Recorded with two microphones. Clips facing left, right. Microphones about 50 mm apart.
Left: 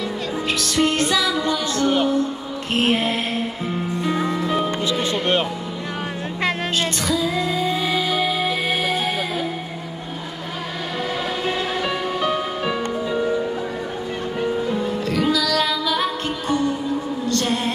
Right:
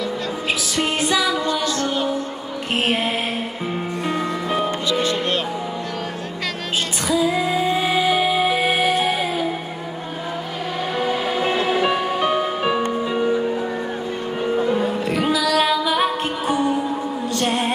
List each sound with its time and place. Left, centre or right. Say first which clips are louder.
0.6 s music: left 2 dB; centre
1.4 s music: left 1 dB; centre
2.8 s mantra: left 2 dB; centre
4.4 s music: even; centre
5.0 s music: left 1 dB; left
7.1 s music: right 6 dB; centre
11.0 s music: right 3 dB; centre
14.9 s music: even; centre
17.5 s music: right 2 dB; right